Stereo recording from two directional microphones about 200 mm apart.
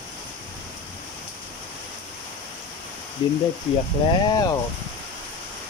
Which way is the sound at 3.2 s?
25° left (ahead or behind).